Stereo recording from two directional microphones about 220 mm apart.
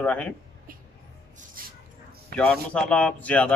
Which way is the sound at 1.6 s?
40° right (ahead or behind).